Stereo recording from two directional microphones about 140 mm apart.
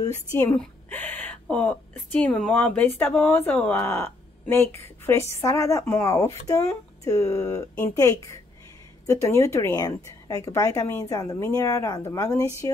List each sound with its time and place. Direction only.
0.0 s a woman's voice: 25° left (ahead or behind)
0.5 s a woman's voice: 10° left (ahead or behind)